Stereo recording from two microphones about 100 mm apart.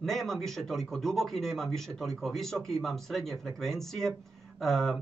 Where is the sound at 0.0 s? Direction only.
5° left (ahead or behind).